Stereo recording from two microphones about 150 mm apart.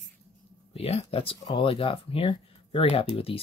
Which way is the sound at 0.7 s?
40° left (ahead or behind).